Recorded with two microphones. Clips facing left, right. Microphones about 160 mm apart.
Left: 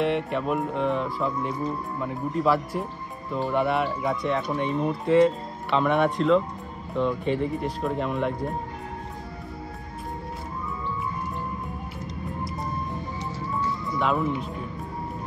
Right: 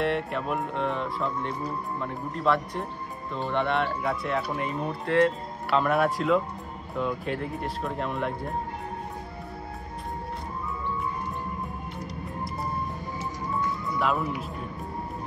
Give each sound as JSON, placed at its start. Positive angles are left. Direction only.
{"t": 0.0, "sound": "speech", "side_deg": 0}
{"t": 13.9, "sound": "speech", "side_deg": 0}